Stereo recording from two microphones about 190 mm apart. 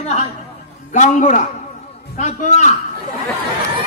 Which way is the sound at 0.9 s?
40° left (ahead or behind).